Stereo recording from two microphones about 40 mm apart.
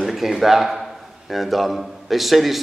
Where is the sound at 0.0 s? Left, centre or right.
Centre.